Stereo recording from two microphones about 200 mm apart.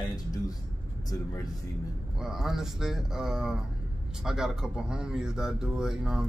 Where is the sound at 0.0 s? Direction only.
20° left (ahead or behind).